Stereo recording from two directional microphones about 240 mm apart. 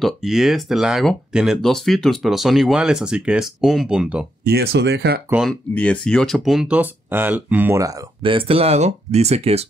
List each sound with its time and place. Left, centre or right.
0.0 s speech: centre
4.5 s speech: right
5.3 s speech: centre; by 9.7 s right